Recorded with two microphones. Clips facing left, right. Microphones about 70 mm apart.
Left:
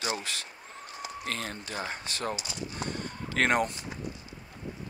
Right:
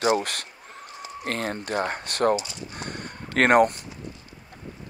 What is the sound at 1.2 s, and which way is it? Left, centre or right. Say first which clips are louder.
Speech: right 9 dB; right.